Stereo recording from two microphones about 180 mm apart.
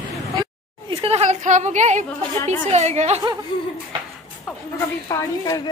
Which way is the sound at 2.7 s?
40° right (ahead or behind).